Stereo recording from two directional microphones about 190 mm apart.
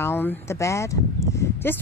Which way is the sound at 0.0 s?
10° left (ahead or behind).